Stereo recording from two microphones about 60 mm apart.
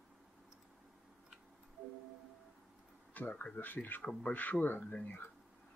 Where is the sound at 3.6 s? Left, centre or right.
Left.